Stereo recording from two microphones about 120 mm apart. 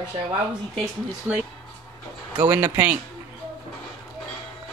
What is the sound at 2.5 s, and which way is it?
Speech, 15° right (ahead or behind).